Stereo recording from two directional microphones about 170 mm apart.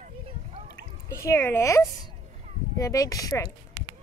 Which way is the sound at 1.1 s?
15° left (ahead or behind).